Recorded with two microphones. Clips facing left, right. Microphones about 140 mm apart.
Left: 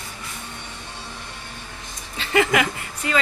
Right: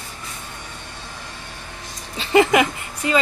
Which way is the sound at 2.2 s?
25° right (ahead or behind).